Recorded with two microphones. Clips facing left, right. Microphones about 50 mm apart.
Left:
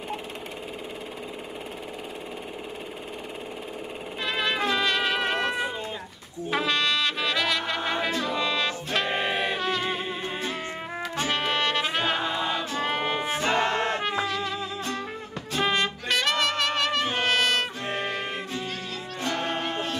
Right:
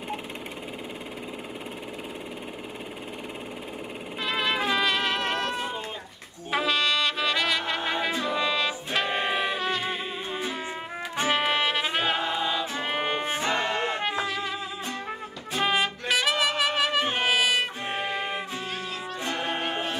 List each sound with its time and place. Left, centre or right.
4.2 s music: centre
5.2 s a sound: centre
6.5 s brass instrument: centre
10.0 s music: left
10.7 s music: centre
13.5 s music: left
14.0 s trumpet: centre
15.6 s trumpet: centre
17.8 s brass instrument: centre
18.7 s music: centre
19.1 s music: right